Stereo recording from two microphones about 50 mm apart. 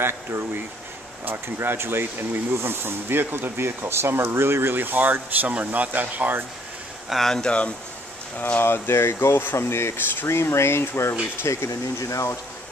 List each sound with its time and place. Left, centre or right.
1.2 s speech: right
7.1 s speech: centre
8.4 s speech: left
11.4 s speech: left